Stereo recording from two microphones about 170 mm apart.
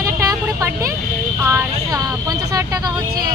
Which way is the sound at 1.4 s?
15° right (ahead or behind).